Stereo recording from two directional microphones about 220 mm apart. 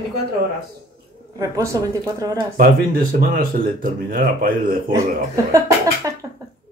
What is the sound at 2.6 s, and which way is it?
Speech, 40° right (ahead or behind).